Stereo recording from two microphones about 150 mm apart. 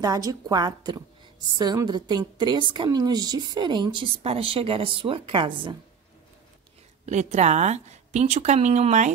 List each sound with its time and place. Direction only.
0.0 s a woman's voice: 25° right (ahead or behind)
7.1 s speech: 50° right (ahead or behind)